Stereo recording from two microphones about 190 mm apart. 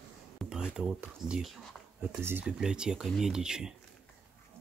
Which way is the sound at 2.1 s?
10° right (ahead or behind).